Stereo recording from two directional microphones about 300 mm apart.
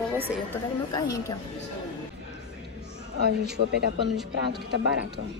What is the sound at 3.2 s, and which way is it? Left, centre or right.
Speech, right.